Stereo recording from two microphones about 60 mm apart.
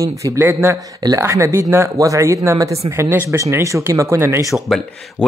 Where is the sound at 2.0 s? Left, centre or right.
Right.